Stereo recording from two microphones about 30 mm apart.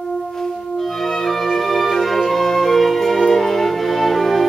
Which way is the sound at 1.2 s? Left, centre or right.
Centre.